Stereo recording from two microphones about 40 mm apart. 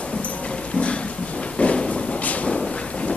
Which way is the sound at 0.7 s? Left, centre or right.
Left.